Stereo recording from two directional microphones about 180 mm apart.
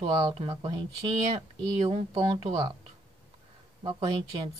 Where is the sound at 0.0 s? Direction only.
30° right (ahead or behind).